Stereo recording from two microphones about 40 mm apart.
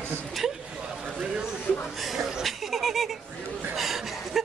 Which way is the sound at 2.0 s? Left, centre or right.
Centre.